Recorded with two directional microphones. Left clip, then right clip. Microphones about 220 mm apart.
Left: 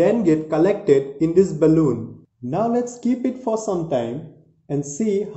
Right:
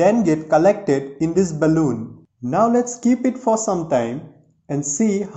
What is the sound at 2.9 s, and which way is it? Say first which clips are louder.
Speech: right 4 dB; centre (ahead or behind).